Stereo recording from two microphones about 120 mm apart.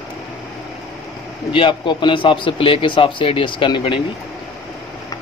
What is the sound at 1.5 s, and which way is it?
A man's voice, 45° left (ahead or behind).